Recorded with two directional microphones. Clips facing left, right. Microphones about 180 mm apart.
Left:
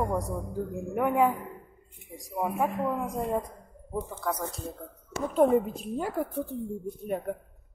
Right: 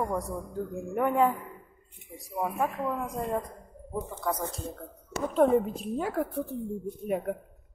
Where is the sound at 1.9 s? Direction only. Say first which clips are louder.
Left 1 dB; 15° left (ahead or behind).